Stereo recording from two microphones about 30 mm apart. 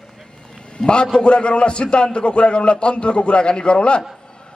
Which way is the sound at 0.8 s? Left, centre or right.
Centre.